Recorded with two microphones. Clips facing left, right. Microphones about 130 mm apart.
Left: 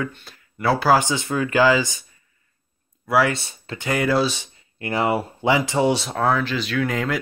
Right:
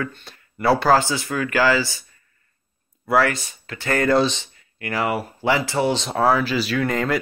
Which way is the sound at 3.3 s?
30° left (ahead or behind).